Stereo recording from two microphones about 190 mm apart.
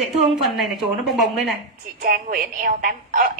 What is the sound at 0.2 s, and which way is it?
A woman's voice, centre (ahead or behind).